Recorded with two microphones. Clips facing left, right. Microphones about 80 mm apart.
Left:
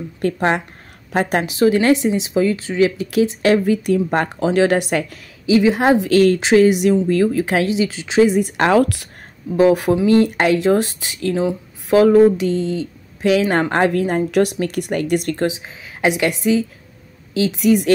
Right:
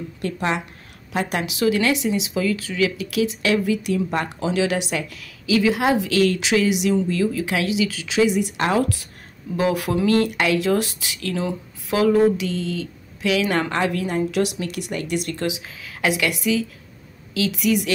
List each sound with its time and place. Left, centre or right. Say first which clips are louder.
0.2 s speech: left 6 dB; left
5.2 s speech: left 4 dB; left
8.4 s speech: left 5 dB; left
8.7 s speech: left 7 dB; left
9.6 s speech: left 7 dB; left